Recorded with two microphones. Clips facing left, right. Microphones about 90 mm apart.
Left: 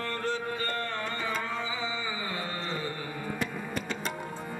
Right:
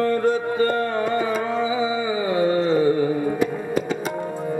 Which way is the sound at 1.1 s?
50° right (ahead or behind).